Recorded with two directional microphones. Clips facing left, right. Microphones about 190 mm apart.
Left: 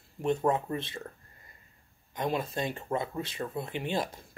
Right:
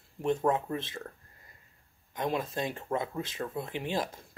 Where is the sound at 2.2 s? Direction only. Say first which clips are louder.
Left 1 dB; centre (ahead or behind).